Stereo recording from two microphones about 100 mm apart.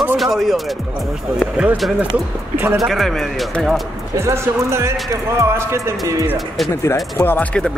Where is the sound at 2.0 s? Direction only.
15° right (ahead or behind).